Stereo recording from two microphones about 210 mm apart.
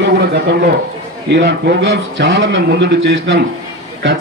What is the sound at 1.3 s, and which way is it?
A man's voice, 55° right (ahead or behind).